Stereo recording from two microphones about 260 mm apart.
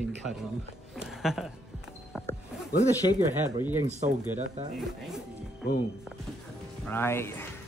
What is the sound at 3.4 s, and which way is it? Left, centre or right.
Speech, centre.